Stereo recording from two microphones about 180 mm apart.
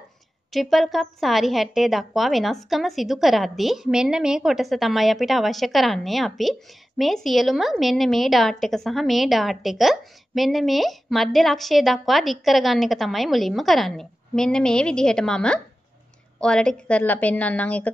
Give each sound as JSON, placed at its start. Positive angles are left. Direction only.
{"t": 0.5, "sound": "a woman's voice", "side_deg": 0}